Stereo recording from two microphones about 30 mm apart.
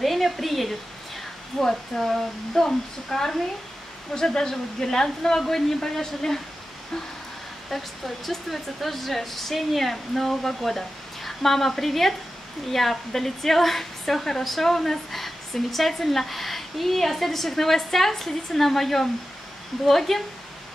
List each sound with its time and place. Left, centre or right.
0.0 s speech: centre
1.5 s speech: centre
2.0 s speech: centre
2.5 s speech: centre
7.7 s speech: centre